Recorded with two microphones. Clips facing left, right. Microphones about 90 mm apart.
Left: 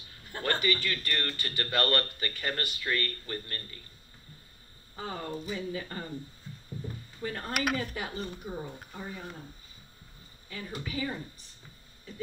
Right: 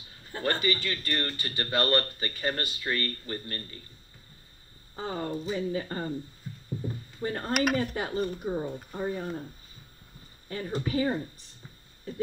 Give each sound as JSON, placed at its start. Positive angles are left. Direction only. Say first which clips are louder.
{"t": 0.3, "sound": "a man's voice", "louder": "right 1 dB", "side_deg": -25}
{"t": 4.9, "sound": "speech", "louder": "right 4 dB", "side_deg": -30}
{"t": 7.2, "sound": "speech", "louder": "right 5 dB", "side_deg": -35}
{"t": 10.5, "sound": "speech", "louder": "right 7 dB", "side_deg": -40}